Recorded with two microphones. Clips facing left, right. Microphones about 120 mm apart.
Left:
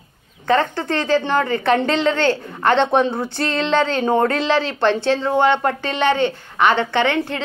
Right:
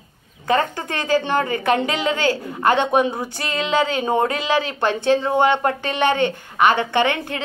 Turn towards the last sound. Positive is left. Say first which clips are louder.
# left 1 dB
turn(degrees=-15)  # may be behind; listen again after turning